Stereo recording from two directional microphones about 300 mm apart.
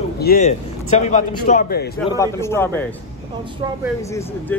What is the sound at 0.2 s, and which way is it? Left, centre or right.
A man's voice, left.